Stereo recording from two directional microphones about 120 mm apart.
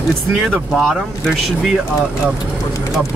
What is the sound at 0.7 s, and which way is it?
Speech, centre (ahead or behind).